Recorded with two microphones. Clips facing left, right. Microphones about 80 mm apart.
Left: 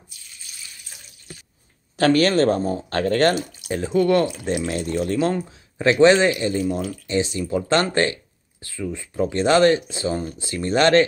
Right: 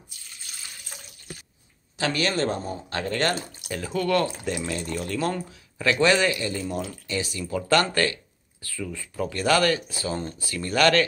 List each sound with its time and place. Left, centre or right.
2.0 s speech: left
3.6 s speech: left